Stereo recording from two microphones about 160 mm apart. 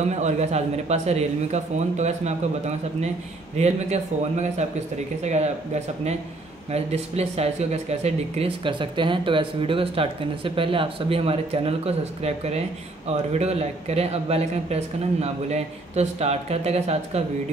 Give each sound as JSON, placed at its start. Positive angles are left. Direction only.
{"t": 0.1, "sound": "speech", "side_deg": -45}
{"t": 6.7, "sound": "speech", "side_deg": -40}